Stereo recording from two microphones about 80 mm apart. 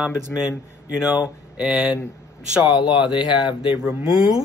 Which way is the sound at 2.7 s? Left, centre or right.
Left.